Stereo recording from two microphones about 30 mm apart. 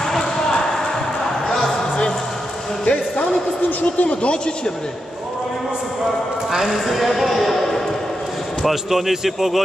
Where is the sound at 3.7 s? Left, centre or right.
Left.